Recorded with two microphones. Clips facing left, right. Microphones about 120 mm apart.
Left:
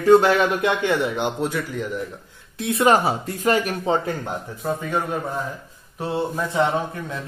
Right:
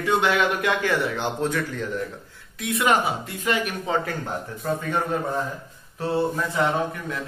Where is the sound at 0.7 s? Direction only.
25° left (ahead or behind).